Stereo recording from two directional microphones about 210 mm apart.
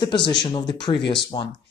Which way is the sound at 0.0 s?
20° left (ahead or behind).